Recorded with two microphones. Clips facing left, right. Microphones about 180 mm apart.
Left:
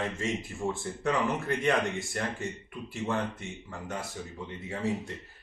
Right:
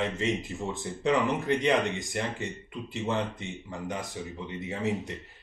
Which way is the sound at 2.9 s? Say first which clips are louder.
Right 1 dB; 20° right (ahead or behind).